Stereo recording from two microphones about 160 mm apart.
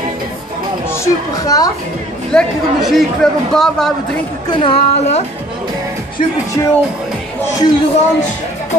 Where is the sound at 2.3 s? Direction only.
Centre (ahead or behind).